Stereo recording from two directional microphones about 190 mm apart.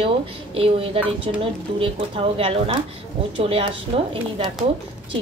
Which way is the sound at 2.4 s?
30° right (ahead or behind).